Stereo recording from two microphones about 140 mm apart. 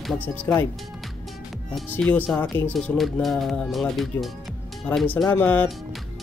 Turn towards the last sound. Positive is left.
turn(degrees=10)  # may be behind; listen again after turning